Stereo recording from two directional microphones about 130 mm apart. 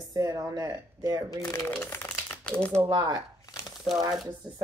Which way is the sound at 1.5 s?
20° left (ahead or behind).